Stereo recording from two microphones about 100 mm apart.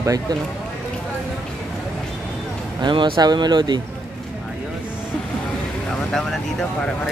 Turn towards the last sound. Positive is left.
turn(degrees=5)  # may be behind; listen again after turning